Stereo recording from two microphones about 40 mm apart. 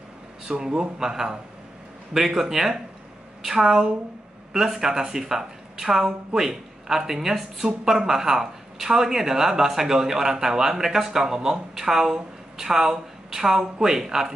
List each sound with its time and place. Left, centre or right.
0.5 s speech: centre